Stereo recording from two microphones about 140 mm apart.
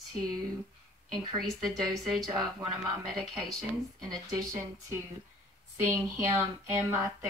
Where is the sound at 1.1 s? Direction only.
30° right (ahead or behind).